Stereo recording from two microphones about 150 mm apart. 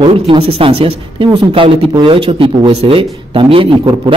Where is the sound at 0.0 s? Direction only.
35° right (ahead or behind).